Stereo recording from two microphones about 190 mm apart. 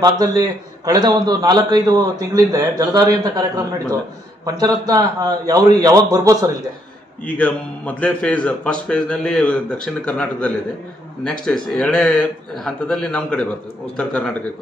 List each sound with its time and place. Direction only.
0.0 s a man's voice: 20° right (ahead or behind)
7.3 s a man's voice: 5° left (ahead or behind)